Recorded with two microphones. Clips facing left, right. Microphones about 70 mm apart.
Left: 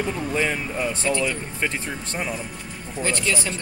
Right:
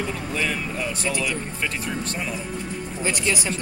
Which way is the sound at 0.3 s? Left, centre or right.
Left.